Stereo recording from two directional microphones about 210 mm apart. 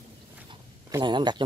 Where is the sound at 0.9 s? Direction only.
20° right (ahead or behind).